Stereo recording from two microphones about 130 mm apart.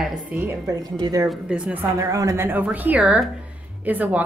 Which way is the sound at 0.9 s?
35° right (ahead or behind).